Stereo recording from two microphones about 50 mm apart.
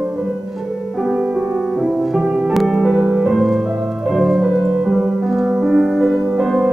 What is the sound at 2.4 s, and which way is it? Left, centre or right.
Music, centre.